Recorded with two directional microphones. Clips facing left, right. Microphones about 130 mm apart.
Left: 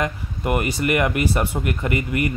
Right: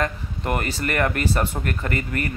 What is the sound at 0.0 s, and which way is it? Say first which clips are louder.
Speech: left 1 dB; 10° left (ahead or behind).